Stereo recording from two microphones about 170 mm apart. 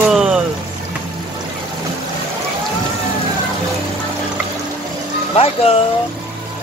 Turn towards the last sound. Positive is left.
turn(degrees=35)  # may be behind; listen again after turning